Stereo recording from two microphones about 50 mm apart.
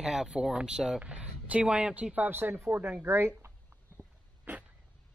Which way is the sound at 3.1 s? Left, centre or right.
Right.